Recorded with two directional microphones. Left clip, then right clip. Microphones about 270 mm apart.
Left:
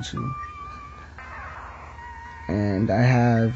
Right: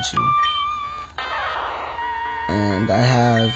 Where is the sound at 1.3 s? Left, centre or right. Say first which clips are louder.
Right 16 dB; right.